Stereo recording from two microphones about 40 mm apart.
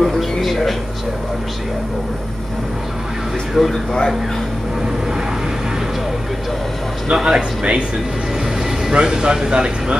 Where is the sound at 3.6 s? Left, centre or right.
Centre.